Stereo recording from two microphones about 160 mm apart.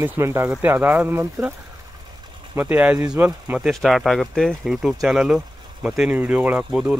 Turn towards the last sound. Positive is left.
turn(degrees=-5)  # may be behind; listen again after turning